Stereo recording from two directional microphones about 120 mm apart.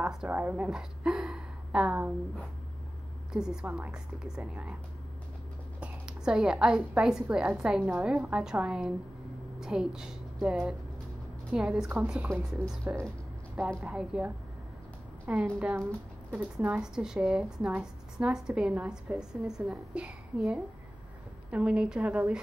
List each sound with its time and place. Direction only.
0.0 s a woman's voice: 5° right (ahead or behind)
3.3 s a woman's voice: 5° right (ahead or behind)
5.8 s a woman's voice: 5° right (ahead or behind)
13.8 s a woman's voice: 5° right (ahead or behind)